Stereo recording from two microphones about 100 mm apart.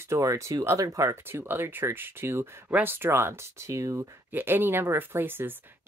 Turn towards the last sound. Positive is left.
turn(degrees=-20)  # may be behind; listen again after turning